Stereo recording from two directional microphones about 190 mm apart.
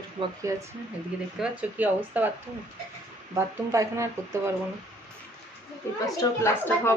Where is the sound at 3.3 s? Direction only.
15° right (ahead or behind).